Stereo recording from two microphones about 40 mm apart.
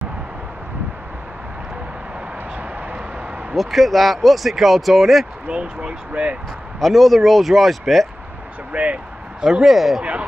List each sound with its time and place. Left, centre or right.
3.5 s speech: centre
5.5 s speech: right
6.8 s speech: centre
8.7 s speech: right
9.4 s speech: centre